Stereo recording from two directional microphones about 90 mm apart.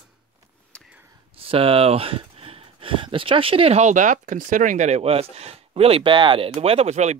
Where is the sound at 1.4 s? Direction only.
90° right.